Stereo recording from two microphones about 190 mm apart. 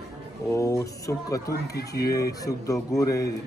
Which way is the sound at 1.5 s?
55° left (ahead or behind).